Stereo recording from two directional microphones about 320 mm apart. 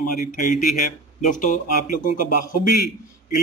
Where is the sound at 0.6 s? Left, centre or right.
Left.